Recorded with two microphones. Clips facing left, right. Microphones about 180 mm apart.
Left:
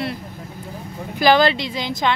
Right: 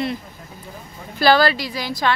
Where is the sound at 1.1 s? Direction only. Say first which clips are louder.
Left 1 dB; 15° left (ahead or behind).